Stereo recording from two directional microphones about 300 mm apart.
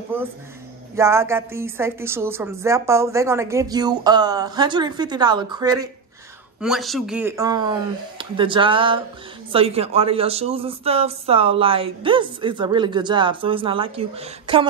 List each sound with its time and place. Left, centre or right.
0.1 s a man's voice: centre
6.6 s a man's voice: centre